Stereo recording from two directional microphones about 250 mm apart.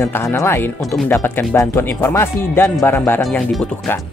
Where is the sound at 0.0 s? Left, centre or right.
Centre.